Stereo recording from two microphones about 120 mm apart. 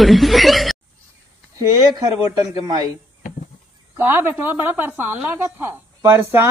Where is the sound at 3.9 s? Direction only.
15° right (ahead or behind).